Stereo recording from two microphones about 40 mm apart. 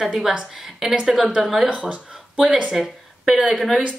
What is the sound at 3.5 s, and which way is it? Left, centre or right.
Speech, centre.